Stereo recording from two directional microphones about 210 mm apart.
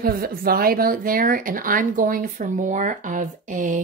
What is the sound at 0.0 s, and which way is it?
A woman's voice, 45° right (ahead or behind).